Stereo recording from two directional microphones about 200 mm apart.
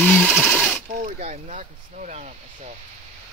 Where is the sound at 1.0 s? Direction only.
35° right (ahead or behind).